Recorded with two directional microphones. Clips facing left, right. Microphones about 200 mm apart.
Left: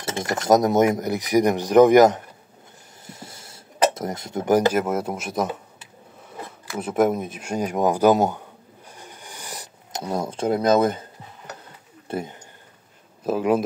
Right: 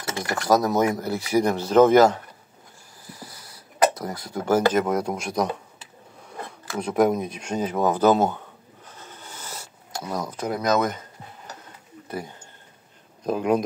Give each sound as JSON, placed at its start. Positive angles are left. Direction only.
{"t": 0.0, "sound": "speech", "side_deg": 25}
{"t": 6.8, "sound": "speech", "side_deg": 5}
{"t": 8.8, "sound": "vehicle", "side_deg": 15}
{"t": 10.0, "sound": "speech", "side_deg": 25}
{"t": 12.1, "sound": "speech", "side_deg": 25}
{"t": 13.2, "sound": "speech", "side_deg": 5}